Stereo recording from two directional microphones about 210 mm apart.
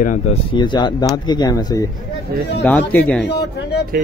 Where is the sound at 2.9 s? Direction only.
5° left (ahead or behind).